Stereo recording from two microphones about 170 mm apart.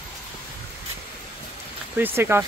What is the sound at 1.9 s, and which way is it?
Speech, 10° right (ahead or behind).